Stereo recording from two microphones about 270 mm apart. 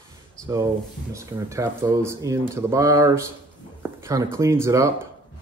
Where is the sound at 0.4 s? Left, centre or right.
Centre.